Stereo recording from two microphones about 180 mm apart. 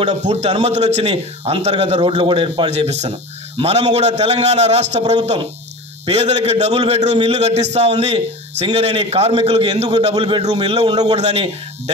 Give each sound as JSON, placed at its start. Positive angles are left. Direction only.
{"t": 0.1, "sound": "a man's voice", "side_deg": -40}
{"t": 11.1, "sound": "a man's voice", "side_deg": -35}